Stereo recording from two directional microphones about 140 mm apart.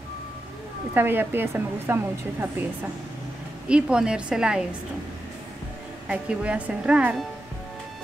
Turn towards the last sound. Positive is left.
turn(degrees=-5)  # may be behind; listen again after turning